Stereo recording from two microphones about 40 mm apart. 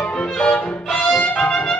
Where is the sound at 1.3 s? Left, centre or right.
Left.